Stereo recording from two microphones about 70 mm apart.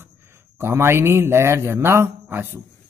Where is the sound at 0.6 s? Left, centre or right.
Right.